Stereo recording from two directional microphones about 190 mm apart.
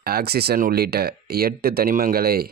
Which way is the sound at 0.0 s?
55° right (ahead or behind).